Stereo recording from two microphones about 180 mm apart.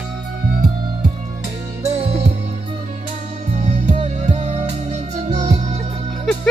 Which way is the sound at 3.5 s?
40° right (ahead or behind).